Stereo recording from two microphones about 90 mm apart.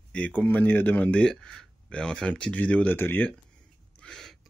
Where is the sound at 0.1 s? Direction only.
15° left (ahead or behind).